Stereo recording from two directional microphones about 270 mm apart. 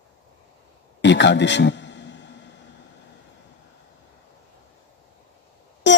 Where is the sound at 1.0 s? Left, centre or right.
Left.